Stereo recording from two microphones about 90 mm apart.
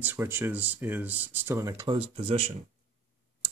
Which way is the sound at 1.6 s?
40° right (ahead or behind).